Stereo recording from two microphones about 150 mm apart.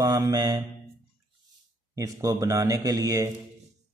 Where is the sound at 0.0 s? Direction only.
25° right (ahead or behind).